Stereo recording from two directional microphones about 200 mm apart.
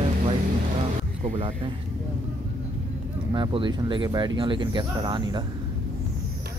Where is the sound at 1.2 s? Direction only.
35° right (ahead or behind).